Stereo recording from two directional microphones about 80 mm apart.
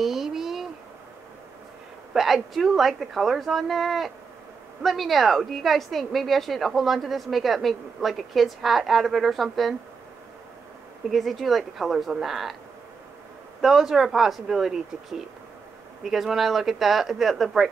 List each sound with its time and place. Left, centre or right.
0.0 s a sound: centre
2.1 s a woman's voice: centre
11.1 s a woman's voice: centre
13.6 s a woman's voice: centre